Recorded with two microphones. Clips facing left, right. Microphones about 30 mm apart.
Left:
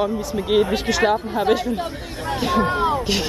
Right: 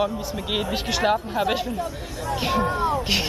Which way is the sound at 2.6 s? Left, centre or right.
Left.